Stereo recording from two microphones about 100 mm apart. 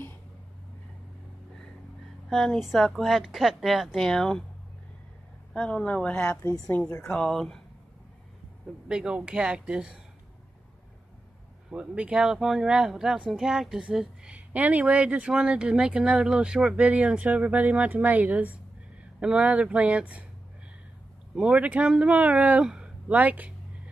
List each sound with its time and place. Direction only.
2.2 s a woman's voice: 5° left (ahead or behind)
5.5 s a woman's voice: 10° left (ahead or behind)
7.0 s a woman's voice: 5° left (ahead or behind)
8.8 s speech: 10° right (ahead or behind)
11.7 s speech: 10° right (ahead or behind)
21.4 s speech: 10° right (ahead or behind)